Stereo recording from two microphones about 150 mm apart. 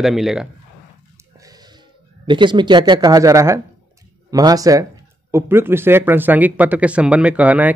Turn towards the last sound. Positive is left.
turn(degrees=-10)  # may be behind; listen again after turning